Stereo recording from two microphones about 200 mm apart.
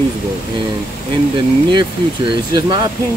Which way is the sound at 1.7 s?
25° right (ahead or behind).